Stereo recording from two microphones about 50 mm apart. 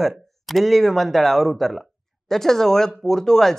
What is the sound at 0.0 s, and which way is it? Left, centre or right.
Speech, centre.